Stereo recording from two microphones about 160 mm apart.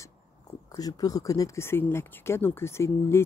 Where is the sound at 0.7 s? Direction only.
25° left (ahead or behind).